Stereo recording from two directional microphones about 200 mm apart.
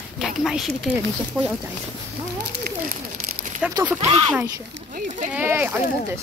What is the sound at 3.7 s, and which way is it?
Speech, 10° right (ahead or behind).